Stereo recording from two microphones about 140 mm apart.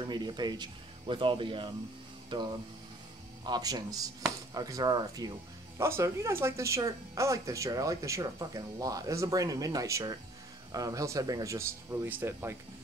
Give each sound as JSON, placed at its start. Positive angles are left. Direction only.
{"t": 0.0, "sound": "speech", "side_deg": -30}